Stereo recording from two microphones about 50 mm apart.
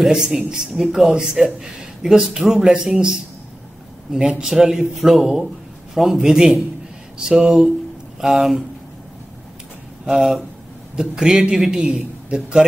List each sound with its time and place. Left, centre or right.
0.0 s a man's voice: centre
1.1 s a man's voice: centre
10.0 s a man's voice: centre
11.8 s a man's voice: centre